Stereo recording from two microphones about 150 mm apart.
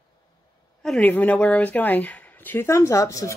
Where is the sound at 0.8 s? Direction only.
5° left (ahead or behind); by 3.3 s 20° left (ahead or behind).